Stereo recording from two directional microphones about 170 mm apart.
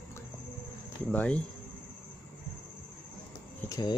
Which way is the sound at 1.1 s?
5° left (ahead or behind).